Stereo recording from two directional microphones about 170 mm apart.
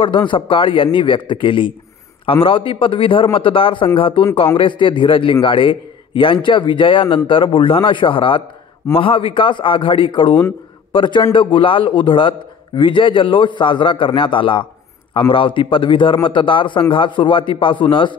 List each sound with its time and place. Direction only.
0.0 s a man's voice: 30° left (ahead or behind)